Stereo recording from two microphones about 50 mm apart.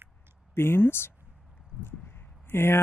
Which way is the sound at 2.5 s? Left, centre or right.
Left.